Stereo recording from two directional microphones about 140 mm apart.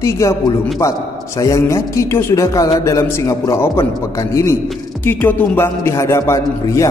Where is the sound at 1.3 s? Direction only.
20° left (ahead or behind).